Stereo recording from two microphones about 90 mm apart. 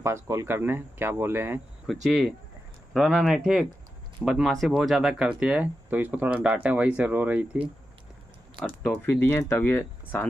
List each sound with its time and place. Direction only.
0.0 s speech: 30° right (ahead or behind)
1.9 s speech: centre (ahead or behind); by 7.6 s 15° right (ahead or behind)
9.0 s speech: 25° left (ahead or behind)